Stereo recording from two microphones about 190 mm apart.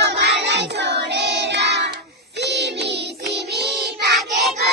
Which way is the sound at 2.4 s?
60° right (ahead or behind).